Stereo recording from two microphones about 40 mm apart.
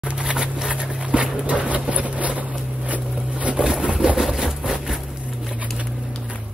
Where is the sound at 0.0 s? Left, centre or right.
Right.